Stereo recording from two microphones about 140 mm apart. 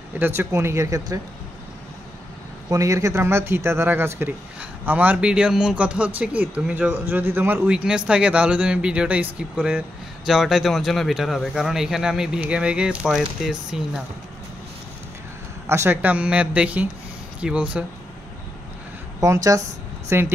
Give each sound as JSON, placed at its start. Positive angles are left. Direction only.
{"t": 0.2, "sound": "speech", "side_deg": -20}
{"t": 2.7, "sound": "a man's voice", "side_deg": -20}
{"t": 15.6, "sound": "speech", "side_deg": -20}
{"t": 19.1, "sound": "speech", "side_deg": -20}